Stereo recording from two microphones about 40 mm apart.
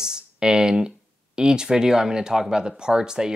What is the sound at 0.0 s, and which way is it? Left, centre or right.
Speech, centre.